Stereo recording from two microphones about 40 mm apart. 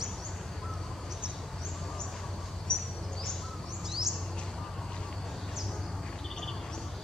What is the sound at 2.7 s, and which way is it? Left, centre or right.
Bird, centre.